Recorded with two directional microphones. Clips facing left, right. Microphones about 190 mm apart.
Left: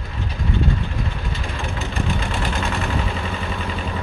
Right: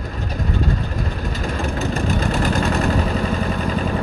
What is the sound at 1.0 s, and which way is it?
Vehicle, 40° right (ahead or behind).